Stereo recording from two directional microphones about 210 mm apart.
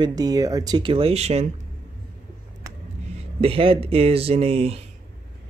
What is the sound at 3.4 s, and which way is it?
Speech, 25° right (ahead or behind).